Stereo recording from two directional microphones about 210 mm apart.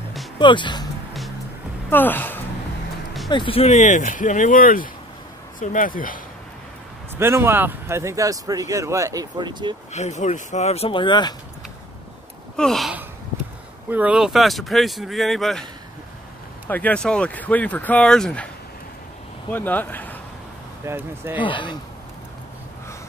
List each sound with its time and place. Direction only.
0.4 s speech: 20° left (ahead or behind)
1.9 s speech: 10° left (ahead or behind)
3.3 s speech: 25° left (ahead or behind); by 6.1 s 40° left (ahead or behind)
7.2 s speech: 10° right (ahead or behind)
9.9 s speech: 35° left (ahead or behind)
12.5 s gasp: centre (ahead or behind)
13.8 s speech: 5° right (ahead or behind)
16.6 s speech: 10° left (ahead or behind)
19.5 s speech: 10° left (ahead or behind)
20.8 s speech: 10° right (ahead or behind)
21.4 s speech: 20° left (ahead or behind)